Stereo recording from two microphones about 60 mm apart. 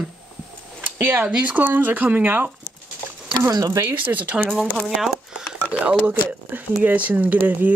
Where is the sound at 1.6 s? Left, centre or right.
Right.